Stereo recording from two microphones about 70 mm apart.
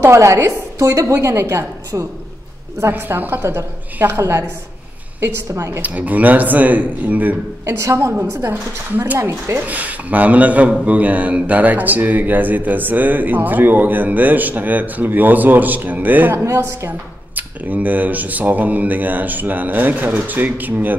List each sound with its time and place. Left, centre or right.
0.0 s a woman's voice: right
2.9 s a woman's voice: right
4.2 s a woman's voice: right
5.8 s speech: right
7.8 s a woman's voice: right
16.4 s a woman's voice: right
17.4 s speech: right